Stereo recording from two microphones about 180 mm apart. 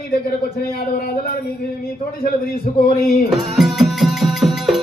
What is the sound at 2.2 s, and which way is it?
A man's voice, 55° left (ahead or behind).